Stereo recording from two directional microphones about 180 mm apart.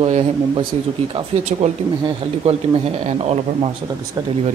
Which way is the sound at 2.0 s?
35° right (ahead or behind).